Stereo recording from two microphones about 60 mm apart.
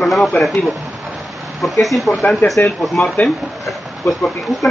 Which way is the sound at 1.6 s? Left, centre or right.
Centre.